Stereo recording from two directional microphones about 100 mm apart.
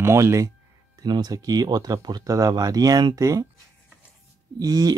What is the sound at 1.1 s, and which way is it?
Speech, 40° right (ahead or behind).